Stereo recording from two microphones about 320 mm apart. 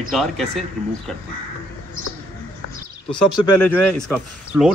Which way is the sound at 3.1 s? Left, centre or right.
Left.